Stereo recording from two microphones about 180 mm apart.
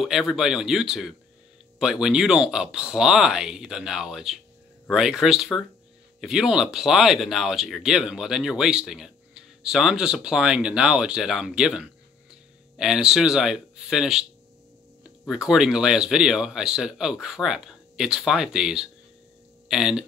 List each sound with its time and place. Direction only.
0.0 s speech: centre (ahead or behind)
15.2 s speech: 5° right (ahead or behind)